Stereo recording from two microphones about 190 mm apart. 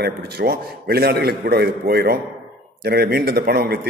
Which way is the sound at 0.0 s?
55° right (ahead or behind).